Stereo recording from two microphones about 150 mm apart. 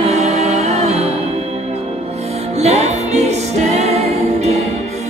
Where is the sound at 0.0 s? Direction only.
45° right (ahead or behind).